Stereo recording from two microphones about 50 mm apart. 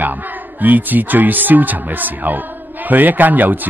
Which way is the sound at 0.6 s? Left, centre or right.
Right.